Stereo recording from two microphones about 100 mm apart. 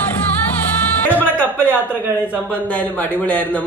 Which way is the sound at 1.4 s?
20° right (ahead or behind).